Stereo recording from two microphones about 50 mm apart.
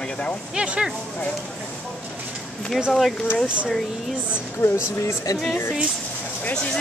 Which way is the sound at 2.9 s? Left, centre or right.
Centre.